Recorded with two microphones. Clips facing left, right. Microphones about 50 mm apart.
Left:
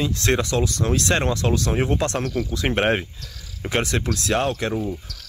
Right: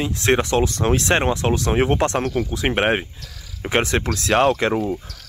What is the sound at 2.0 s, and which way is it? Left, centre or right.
Speech, right.